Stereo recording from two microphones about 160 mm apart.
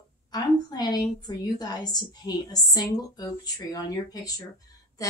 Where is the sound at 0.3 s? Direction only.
25° left (ahead or behind).